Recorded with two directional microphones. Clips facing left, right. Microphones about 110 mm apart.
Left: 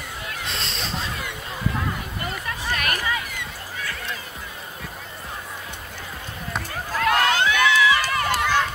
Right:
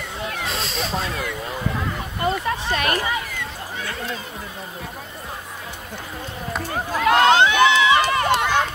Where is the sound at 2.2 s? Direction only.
25° right (ahead or behind).